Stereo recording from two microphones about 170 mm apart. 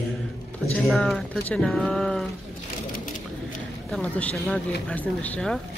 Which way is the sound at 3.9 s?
5° left (ahead or behind).